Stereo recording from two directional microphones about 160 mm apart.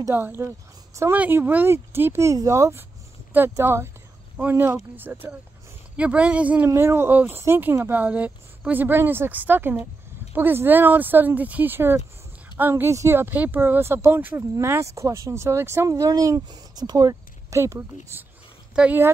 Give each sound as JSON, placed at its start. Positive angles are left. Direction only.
{"t": 0.0, "sound": "speech", "side_deg": -15}